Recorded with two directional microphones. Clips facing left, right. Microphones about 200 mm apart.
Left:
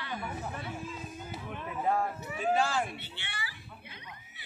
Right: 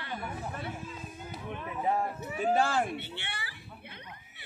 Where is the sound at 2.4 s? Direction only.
55° right (ahead or behind).